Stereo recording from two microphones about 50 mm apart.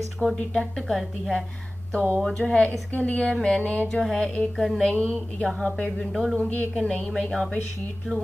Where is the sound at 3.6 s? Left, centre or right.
Left.